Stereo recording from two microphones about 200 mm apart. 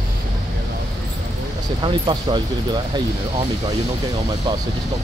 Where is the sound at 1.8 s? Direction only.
25° right (ahead or behind).